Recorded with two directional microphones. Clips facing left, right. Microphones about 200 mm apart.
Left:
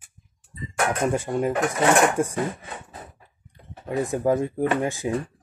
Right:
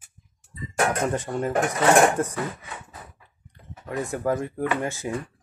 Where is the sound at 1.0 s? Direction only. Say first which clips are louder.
Left 2 dB; 10° left (ahead or behind).